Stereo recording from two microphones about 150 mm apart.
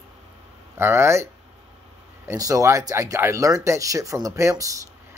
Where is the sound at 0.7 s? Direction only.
15° right (ahead or behind).